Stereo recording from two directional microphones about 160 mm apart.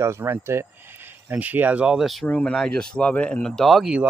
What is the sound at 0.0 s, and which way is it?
Speech, 15° right (ahead or behind).